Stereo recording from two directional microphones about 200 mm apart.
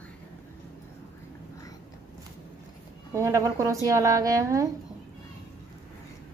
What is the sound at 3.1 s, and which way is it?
Speech, 15° right (ahead or behind).